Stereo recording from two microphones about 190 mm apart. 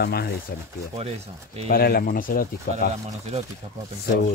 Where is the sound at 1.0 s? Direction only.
35° right (ahead or behind).